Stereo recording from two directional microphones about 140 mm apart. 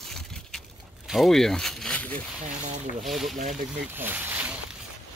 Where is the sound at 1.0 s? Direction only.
Centre (ahead or behind).